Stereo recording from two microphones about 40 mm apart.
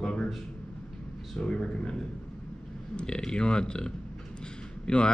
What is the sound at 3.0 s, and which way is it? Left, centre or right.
Speech, left.